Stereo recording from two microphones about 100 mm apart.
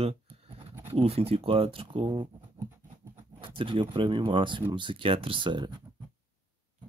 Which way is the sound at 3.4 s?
55° right (ahead or behind).